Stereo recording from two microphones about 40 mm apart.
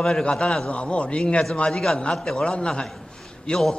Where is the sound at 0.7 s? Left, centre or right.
Left.